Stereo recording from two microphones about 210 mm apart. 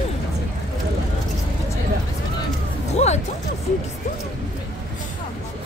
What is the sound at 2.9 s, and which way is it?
Speech, 30° left (ahead or behind).